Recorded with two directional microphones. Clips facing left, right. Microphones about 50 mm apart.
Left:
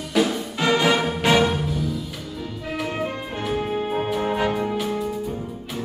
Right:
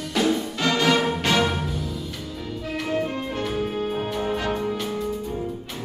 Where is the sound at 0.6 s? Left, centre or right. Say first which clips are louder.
Left 2 dB; centre.